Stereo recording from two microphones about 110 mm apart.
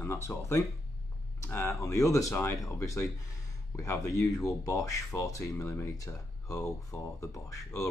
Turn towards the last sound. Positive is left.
turn(degrees=30)  # may be behind; listen again after turning